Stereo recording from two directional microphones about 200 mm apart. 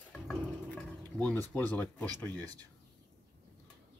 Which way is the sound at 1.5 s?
10° left (ahead or behind).